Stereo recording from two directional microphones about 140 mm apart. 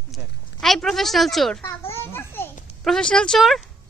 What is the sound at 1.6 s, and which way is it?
Children playing, 15° left (ahead or behind).